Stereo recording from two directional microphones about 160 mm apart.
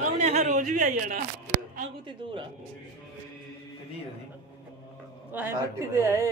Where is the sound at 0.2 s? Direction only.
40° right (ahead or behind); by 1.2 s 60° right (ahead or behind).